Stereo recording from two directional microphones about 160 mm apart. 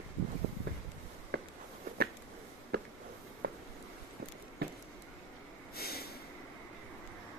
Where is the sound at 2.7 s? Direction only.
80° right.